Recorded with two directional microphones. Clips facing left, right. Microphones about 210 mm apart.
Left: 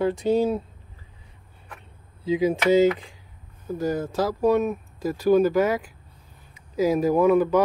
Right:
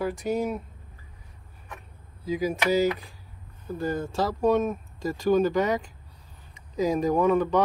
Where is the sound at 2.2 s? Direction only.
25° left (ahead or behind).